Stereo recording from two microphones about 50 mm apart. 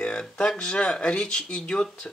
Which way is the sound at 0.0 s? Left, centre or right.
Centre.